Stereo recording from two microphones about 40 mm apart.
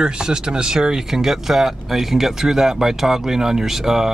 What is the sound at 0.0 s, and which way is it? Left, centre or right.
Speech, centre.